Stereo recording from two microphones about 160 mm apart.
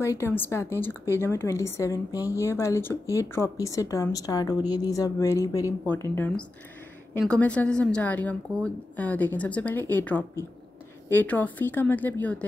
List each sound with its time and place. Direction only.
0.0 s a woman's voice: 15° left (ahead or behind)